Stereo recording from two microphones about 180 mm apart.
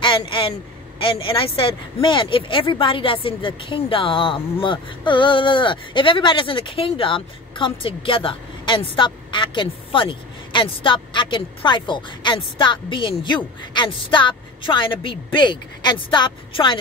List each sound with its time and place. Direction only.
0.0 s speech: 30° left (ahead or behind)